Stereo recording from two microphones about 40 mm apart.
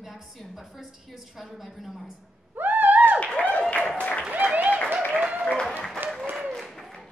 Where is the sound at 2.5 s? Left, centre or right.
Right.